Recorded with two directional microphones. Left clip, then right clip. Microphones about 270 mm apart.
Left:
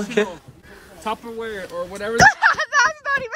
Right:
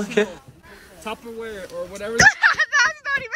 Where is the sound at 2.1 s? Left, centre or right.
Centre.